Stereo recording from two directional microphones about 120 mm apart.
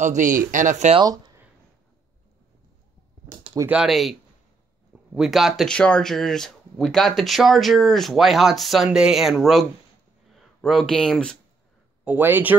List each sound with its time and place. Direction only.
0.0 s speech: 90° right
1.0 s speech: 30° right (ahead or behind)
3.6 s speech: 5° right (ahead or behind)
12.0 s speech: 15° right (ahead or behind)